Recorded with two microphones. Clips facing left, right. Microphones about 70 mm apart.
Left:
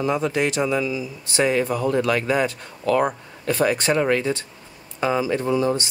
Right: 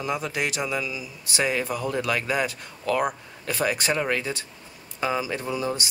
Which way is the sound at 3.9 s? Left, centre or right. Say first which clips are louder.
Left 6 dB; centre.